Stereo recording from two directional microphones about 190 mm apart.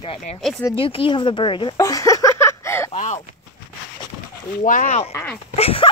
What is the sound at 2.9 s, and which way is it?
Speech, 40° left (ahead or behind).